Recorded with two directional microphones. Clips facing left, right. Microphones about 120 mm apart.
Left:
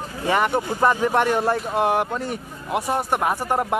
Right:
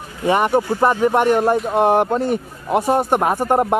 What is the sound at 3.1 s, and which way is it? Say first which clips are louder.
Speech: right 5 dB; 25° right (ahead or behind).